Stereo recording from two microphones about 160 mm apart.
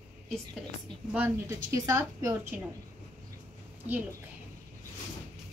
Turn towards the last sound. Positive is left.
turn(degrees=-10)  # may be behind; listen again after turning